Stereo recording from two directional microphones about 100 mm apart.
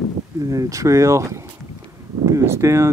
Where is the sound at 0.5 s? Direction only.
35° right (ahead or behind).